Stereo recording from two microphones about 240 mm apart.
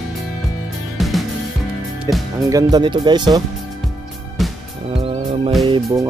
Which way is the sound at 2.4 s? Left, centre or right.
Centre.